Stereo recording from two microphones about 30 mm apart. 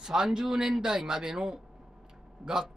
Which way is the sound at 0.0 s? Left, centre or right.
Right.